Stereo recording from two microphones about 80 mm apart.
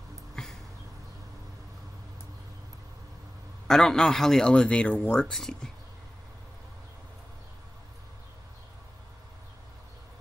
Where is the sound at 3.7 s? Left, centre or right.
Centre.